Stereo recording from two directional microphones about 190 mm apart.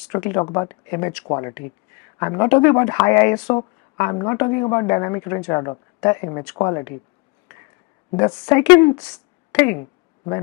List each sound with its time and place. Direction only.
0.1 s speech: 20° left (ahead or behind)
8.1 s a woman's voice: 30° left (ahead or behind)
8.5 s speech: 15° left (ahead or behind)